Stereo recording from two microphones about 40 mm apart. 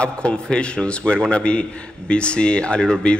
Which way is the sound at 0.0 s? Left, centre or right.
Left.